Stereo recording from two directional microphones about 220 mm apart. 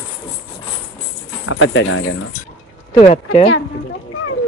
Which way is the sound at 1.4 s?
65° left (ahead or behind).